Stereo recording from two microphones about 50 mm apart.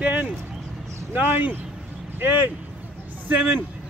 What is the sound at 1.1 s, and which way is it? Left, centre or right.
Speech, right.